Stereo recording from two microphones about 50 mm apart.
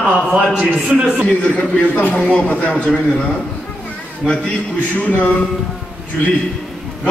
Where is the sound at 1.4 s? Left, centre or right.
Left.